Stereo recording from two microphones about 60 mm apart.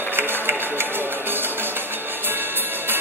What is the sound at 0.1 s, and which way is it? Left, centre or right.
Music, right.